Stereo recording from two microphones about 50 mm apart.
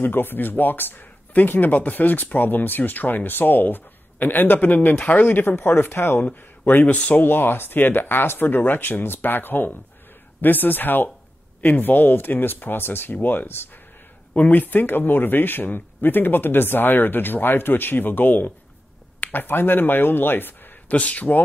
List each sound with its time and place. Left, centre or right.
0.0 s speech: left
19.1 s a sound: left
19.4 s speech: left
20.9 s speech: left